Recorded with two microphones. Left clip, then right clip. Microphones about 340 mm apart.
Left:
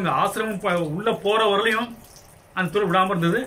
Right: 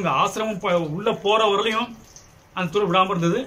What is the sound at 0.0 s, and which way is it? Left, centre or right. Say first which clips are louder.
A man's voice: right 1 dB; centre.